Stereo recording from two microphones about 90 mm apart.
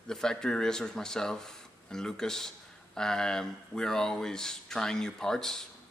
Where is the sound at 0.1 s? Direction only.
5° left (ahead or behind).